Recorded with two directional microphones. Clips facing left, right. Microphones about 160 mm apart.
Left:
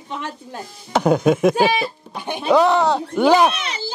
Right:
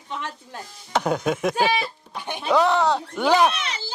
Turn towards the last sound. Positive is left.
turn(degrees=10)  # may be behind; listen again after turning